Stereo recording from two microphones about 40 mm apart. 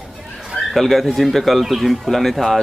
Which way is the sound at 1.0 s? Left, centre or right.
Centre.